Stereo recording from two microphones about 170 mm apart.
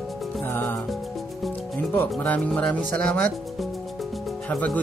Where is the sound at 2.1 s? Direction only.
5° left (ahead or behind).